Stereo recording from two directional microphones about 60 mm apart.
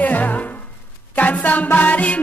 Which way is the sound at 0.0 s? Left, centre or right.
Left.